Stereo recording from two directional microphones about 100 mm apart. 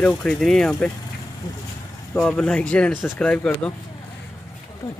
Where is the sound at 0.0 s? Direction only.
5° left (ahead or behind).